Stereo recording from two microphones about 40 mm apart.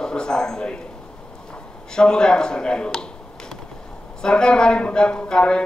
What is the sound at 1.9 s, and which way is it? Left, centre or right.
A man's voice, centre.